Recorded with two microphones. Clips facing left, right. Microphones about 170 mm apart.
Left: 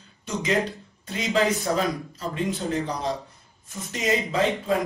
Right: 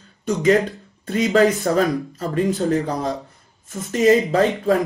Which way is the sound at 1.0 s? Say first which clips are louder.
Right 7 dB; 60° right (ahead or behind).